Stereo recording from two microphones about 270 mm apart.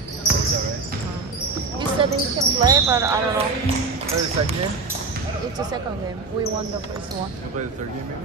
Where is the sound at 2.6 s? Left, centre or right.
Centre.